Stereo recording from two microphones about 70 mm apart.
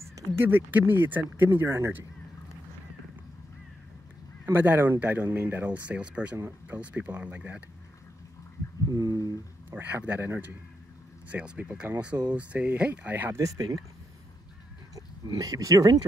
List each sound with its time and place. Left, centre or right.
0.5 s speech: right
4.5 s speech: right
6.3 s speech: right
6.8 s speech: right
8.8 s a sound: right
9.7 s speech: right
11.2 s speech: centre
13.4 s speech: right
15.0 s speech: right